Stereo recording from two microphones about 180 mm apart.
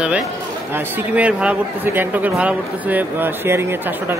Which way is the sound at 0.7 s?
10° right (ahead or behind).